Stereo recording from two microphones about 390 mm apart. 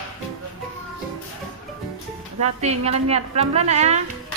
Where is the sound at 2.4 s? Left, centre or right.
Centre.